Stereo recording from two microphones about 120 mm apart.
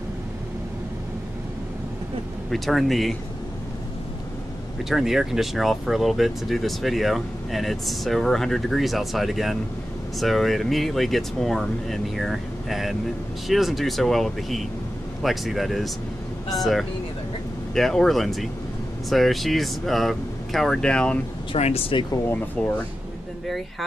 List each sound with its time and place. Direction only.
2.5 s speech: centre (ahead or behind)
4.8 s speech: centre (ahead or behind)
21.5 s speech: 60° left (ahead or behind)
22.6 s speech: 10° left (ahead or behind)